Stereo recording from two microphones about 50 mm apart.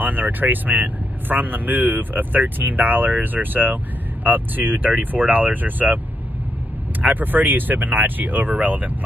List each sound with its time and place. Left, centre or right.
0.0 s speech: right
7.0 s speech: right